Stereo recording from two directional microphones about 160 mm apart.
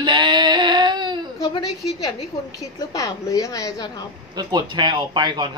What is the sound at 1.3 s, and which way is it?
A woman's voice, 25° left (ahead or behind).